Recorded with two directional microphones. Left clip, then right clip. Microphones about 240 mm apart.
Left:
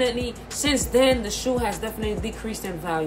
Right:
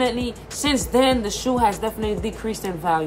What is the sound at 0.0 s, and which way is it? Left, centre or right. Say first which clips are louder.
A woman's voice: right 1 dB; centre.